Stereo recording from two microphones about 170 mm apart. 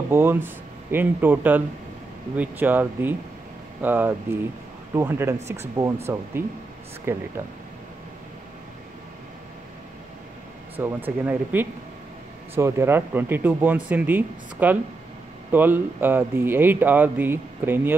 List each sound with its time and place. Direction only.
0.1 s speech: 15° right (ahead or behind)
7.1 s speech: 15° right (ahead or behind)
10.8 s speech: 10° right (ahead or behind)